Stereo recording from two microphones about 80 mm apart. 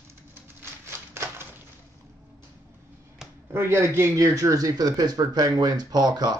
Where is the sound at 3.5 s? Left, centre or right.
Right.